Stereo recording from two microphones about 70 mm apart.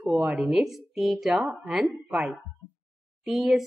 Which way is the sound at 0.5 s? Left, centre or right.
Centre.